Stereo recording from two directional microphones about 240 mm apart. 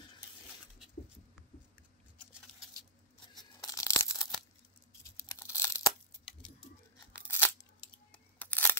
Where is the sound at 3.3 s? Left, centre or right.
Centre.